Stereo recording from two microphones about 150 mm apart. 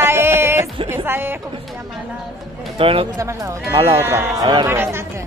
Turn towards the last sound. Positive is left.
turn(degrees=-15)  # may be behind; listen again after turning